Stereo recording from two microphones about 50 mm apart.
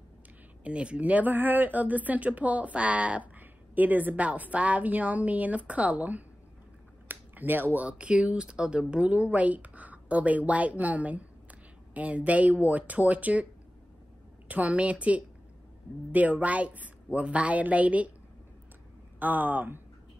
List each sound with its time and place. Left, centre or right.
0.7 s speech: right
7.1 s a sound: right
7.8 s speech: right
14.5 s speech: right
19.1 s speech: right